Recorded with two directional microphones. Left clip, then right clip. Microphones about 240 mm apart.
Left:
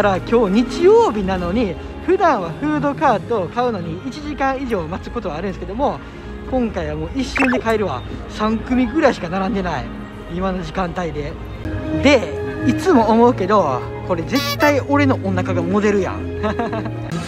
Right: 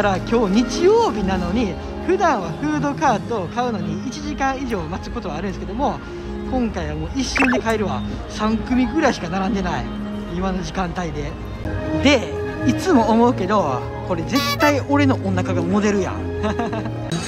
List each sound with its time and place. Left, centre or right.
0.0 s speech: centre
14.3 s speech: centre
14.6 s speech: centre